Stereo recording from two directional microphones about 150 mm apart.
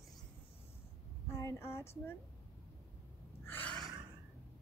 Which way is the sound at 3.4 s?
15° left (ahead or behind).